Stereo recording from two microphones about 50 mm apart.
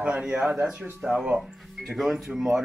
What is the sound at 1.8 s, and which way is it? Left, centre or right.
Speech, centre.